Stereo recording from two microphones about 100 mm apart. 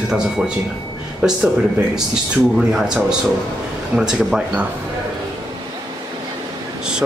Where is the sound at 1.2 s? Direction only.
10° right (ahead or behind).